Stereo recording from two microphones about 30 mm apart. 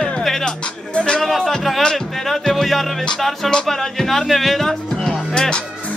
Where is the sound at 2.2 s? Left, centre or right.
Centre.